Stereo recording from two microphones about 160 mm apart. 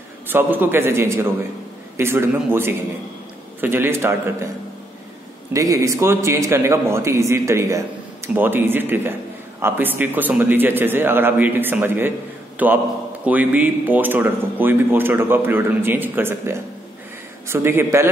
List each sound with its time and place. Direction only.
0.3 s speech: 10° right (ahead or behind)
5.5 s speech: 20° right (ahead or behind)